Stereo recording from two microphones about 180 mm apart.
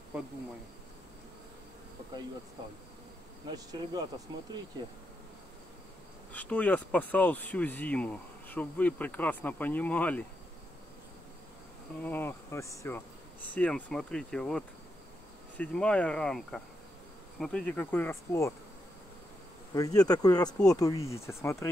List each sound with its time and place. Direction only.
3.4 s insect: 20° right (ahead or behind)
6.3 s speech: 10° left (ahead or behind)
12.0 s speech: 10° left (ahead or behind)
19.7 s speech: 20° left (ahead or behind)